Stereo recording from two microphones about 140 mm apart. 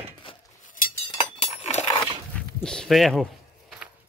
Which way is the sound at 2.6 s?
5° left (ahead or behind).